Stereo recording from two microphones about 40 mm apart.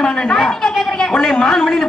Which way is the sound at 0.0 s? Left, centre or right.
Left.